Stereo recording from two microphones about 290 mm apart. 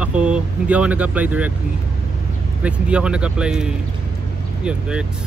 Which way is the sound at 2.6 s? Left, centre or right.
Centre.